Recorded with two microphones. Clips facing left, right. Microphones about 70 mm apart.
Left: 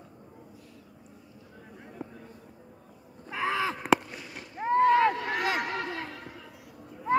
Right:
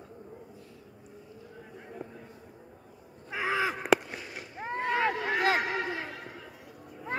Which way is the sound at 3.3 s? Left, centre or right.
Centre.